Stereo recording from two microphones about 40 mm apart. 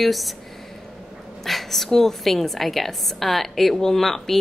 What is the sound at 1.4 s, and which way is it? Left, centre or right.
A woman's voice, centre.